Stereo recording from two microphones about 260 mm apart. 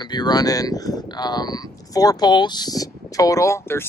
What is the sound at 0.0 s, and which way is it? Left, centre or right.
Speech, centre.